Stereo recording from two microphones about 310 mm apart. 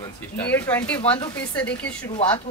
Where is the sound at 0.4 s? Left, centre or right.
Centre.